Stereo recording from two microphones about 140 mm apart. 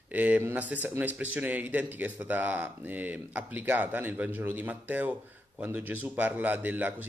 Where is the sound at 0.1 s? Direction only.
10° right (ahead or behind).